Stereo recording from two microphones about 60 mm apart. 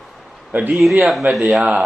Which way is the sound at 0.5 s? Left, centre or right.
Right.